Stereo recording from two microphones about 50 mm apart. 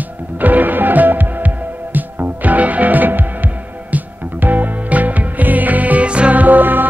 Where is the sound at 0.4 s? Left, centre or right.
Right.